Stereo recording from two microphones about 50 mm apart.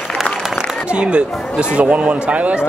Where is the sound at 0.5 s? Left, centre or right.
Right.